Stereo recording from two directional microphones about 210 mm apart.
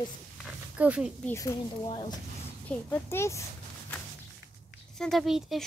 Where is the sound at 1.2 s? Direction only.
15° left (ahead or behind).